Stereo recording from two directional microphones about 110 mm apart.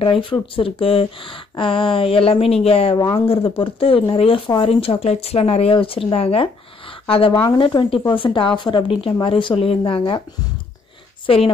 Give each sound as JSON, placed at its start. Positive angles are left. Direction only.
{"t": 0.0, "sound": "a woman's voice", "side_deg": 50}
{"t": 11.2, "sound": "speech", "side_deg": 55}